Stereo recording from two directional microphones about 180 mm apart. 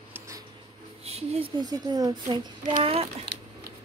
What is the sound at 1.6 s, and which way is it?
Speech, 20° right (ahead or behind).